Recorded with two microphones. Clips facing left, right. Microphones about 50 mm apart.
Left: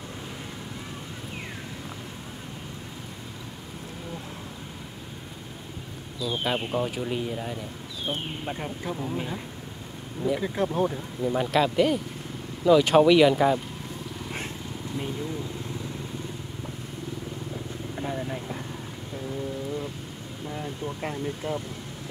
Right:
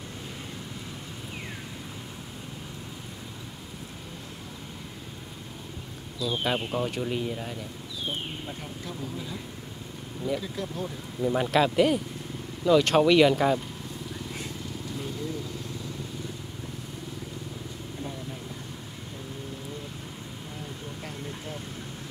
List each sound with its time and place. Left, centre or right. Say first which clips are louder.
6.1 s speech: even; centre
8.5 s speech: left 5 dB; left
10.4 s speech: left 8 dB; left
11.1 s speech: right 1 dB; centre
18.0 s vehicle: left 7 dB; left
21.0 s vehicle: left 8 dB; left